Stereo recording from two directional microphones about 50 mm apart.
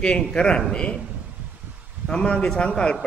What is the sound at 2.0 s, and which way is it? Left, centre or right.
Speech, centre.